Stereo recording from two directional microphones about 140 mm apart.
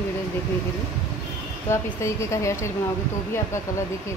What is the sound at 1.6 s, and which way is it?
Speech, 20° left (ahead or behind).